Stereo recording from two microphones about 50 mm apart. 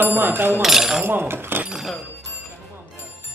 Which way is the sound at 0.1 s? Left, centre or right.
Right.